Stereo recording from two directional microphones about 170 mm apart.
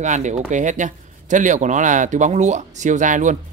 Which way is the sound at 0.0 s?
45° right (ahead or behind).